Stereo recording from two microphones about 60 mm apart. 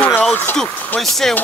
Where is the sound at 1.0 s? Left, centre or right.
Centre.